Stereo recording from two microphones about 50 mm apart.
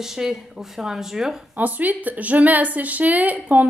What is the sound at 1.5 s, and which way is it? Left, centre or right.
Speech, right.